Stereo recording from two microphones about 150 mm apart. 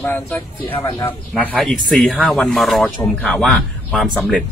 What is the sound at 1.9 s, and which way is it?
Speech, 5° left (ahead or behind).